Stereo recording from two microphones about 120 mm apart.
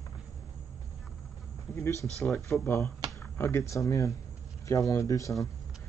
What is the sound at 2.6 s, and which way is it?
Speech, 20° left (ahead or behind).